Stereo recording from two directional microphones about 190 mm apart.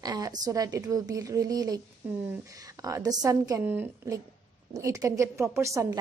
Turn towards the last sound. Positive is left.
turn(degrees=-15)  # may be behind; listen again after turning